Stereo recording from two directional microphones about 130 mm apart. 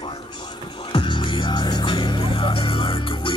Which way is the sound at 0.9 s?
40° left (ahead or behind).